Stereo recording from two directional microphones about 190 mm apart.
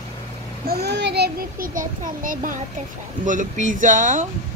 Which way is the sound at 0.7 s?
60° right (ahead or behind).